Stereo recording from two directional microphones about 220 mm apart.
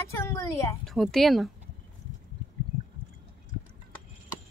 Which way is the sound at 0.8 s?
Centre (ahead or behind).